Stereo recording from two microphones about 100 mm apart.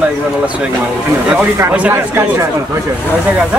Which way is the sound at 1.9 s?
25° right (ahead or behind).